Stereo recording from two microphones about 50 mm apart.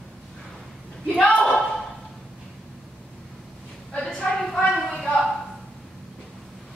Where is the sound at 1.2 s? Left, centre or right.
Left.